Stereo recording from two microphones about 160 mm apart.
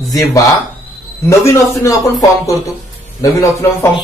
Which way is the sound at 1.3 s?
20° left (ahead or behind).